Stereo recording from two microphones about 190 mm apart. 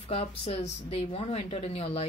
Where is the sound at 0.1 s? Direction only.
30° left (ahead or behind).